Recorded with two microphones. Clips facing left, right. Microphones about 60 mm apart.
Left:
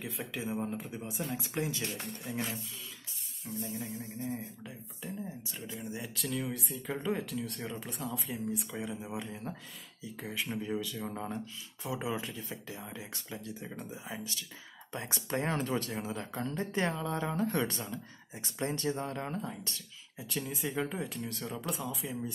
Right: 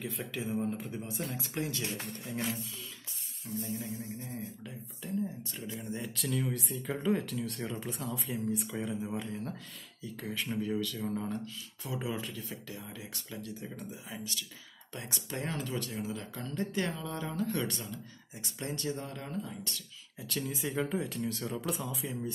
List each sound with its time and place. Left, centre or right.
0.0 s speech: centre
3.6 s speech: left
4.2 s speech: centre; by 19.8 s left
20.2 s speech: centre